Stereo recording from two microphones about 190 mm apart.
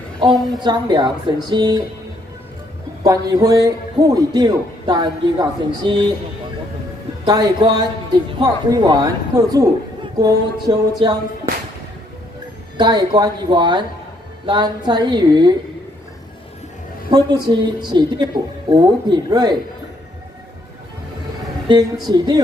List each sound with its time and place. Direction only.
0.6 s a man's voice: 25° right (ahead or behind)
3.0 s a man's voice: 20° right (ahead or behind)
7.2 s a man's voice: 20° right (ahead or behind)
12.7 s a man's voice: 20° right (ahead or behind)
17.1 s a man's voice: 25° right (ahead or behind)
21.6 s a man's voice: 20° right (ahead or behind)